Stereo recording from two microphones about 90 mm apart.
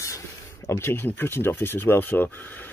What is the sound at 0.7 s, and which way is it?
Speech, 30° left (ahead or behind).